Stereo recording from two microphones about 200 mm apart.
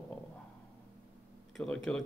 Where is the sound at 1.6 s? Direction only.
5° left (ahead or behind).